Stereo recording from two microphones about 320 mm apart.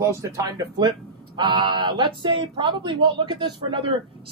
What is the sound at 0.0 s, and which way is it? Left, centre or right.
Speech, centre.